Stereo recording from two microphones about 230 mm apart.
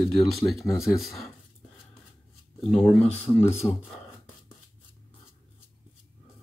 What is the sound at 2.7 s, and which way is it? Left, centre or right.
Speech, centre.